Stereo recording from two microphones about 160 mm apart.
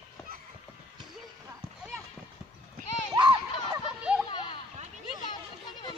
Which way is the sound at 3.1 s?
25° right (ahead or behind).